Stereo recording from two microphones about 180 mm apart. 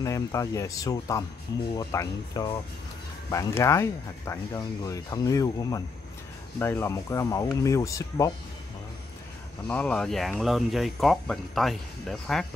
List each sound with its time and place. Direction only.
0.0 s speech: 15° left (ahead or behind)
9.7 s speech: 10° left (ahead or behind)